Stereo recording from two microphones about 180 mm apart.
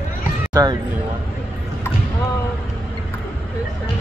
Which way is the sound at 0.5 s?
25° right (ahead or behind).